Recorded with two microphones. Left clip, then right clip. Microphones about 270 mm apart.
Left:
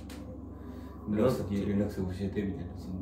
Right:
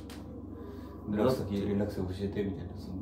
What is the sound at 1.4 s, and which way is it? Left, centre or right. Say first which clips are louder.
Speech: even; centre.